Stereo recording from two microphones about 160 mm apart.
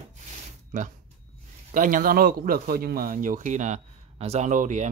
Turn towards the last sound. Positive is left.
turn(degrees=-50)  # may be behind; listen again after turning